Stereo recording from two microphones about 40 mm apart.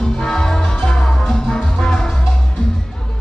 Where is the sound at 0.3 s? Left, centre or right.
Centre.